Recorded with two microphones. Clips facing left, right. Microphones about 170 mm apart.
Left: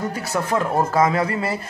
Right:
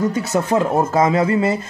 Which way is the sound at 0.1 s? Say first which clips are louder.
Right 5 dB; 20° right (ahead or behind).